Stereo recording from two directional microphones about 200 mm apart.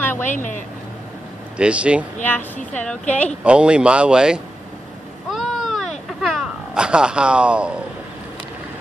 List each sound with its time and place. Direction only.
0.0 s vehicle: 10° left (ahead or behind)
0.3 s speech: 40° left (ahead or behind)
1.6 s speech: 5° right (ahead or behind)
2.2 s a woman's voice: 10° left (ahead or behind)
3.4 s speech: 5° right (ahead or behind)
5.3 s a sound: centre (ahead or behind)